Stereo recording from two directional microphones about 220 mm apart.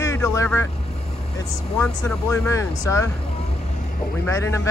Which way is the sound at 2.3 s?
15° left (ahead or behind).